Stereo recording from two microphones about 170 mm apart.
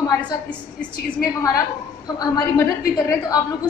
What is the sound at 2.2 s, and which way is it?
A woman's voice, 20° left (ahead or behind).